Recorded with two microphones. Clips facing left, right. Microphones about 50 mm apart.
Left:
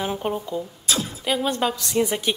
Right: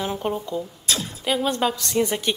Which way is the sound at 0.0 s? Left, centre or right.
Centre.